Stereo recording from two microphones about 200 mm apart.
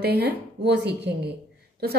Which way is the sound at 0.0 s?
50° right (ahead or behind).